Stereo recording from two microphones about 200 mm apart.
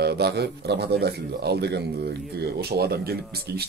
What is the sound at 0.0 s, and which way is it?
A man's voice, 55° right (ahead or behind).